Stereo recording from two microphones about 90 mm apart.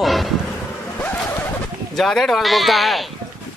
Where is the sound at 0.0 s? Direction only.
Centre (ahead or behind).